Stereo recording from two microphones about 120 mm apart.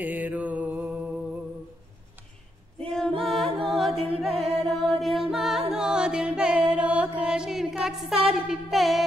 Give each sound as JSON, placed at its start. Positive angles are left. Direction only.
{"t": 0.0, "sound": "mantra", "side_deg": -15}
{"t": 2.9, "sound": "a capella", "side_deg": 5}
{"t": 4.2, "sound": "music", "side_deg": 0}